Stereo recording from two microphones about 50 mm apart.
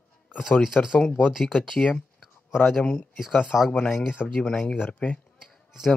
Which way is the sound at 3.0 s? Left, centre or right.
Centre.